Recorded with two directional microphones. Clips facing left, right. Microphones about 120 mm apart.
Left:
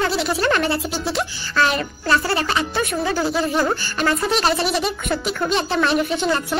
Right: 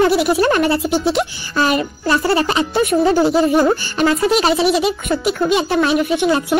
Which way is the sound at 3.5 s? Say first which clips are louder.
Right 6 dB; 15° right (ahead or behind).